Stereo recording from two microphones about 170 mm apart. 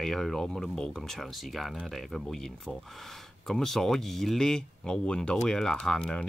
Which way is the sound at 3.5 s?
Centre (ahead or behind).